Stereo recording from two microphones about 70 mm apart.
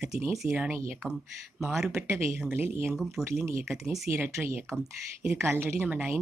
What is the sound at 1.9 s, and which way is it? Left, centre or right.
Speech, right.